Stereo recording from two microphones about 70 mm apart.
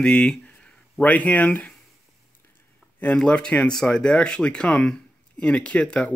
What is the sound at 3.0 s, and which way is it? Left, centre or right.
Speech, centre.